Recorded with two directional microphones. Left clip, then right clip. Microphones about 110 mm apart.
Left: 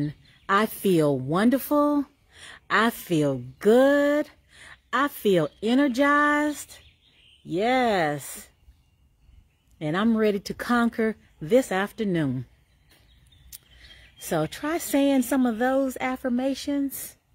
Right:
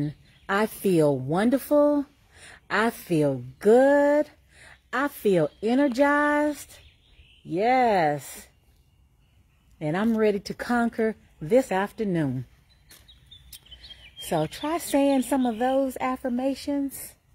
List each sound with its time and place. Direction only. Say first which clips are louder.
0.0 s speech: left 1 dB; 35° left (ahead or behind)
9.8 s speech: even; 25° left (ahead or behind)
13.7 s speech: right 7 dB; 35° left (ahead or behind)